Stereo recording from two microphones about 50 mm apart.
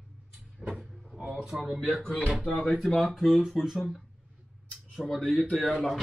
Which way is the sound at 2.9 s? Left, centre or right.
Centre.